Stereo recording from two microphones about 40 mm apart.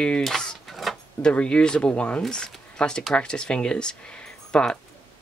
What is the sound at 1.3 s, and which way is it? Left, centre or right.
Speech, left.